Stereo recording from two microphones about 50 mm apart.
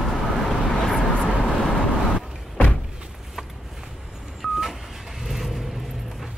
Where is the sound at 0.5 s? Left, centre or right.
Centre.